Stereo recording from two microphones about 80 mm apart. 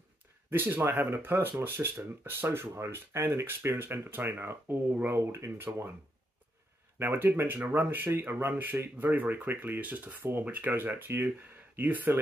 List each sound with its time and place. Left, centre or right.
0.5 s speech: right
7.0 s speech: right